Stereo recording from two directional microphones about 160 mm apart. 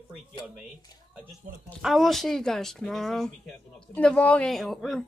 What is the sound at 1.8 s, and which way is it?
Speech, centre (ahead or behind).